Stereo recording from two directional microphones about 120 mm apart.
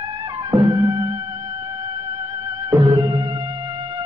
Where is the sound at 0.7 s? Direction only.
25° right (ahead or behind).